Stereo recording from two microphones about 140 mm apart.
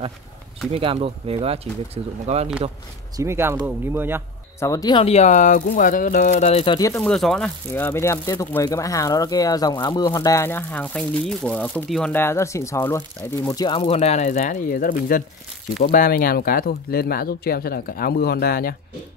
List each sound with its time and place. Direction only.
0.7 s speech: 40° right (ahead or behind)
3.2 s speech: 20° right (ahead or behind)
4.6 s speech: 25° left (ahead or behind)
5.0 s speech: 50° left (ahead or behind)
7.0 s speech: 5° left (ahead or behind); by 13.7 s 25° left (ahead or behind)
13.7 s speech: 45° left (ahead or behind); by 18.8 s 90° left